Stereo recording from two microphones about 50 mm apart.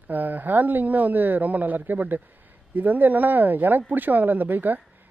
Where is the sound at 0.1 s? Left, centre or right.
Right.